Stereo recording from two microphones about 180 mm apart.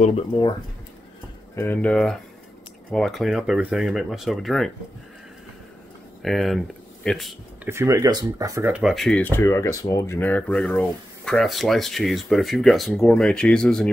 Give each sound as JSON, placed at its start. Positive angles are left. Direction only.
{"t": 0.0, "sound": "speech", "side_deg": 30}
{"t": 1.5, "sound": "speech", "side_deg": 10}
{"t": 6.2, "sound": "speech", "side_deg": 0}
{"t": 7.6, "sound": "speech", "side_deg": -15}